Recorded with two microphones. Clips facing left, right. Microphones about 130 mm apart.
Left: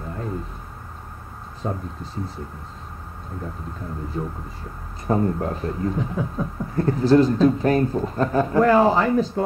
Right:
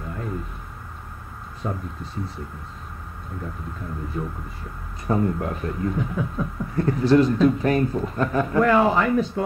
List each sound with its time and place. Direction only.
1.6 s speech: 35° left (ahead or behind)
4.1 s speech: 30° left (ahead or behind)